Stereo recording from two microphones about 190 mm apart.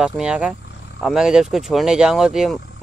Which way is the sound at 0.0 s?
5° right (ahead or behind).